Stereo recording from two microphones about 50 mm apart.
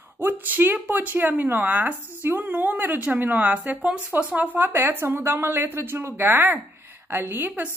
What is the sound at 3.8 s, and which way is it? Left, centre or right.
A woman's voice, right.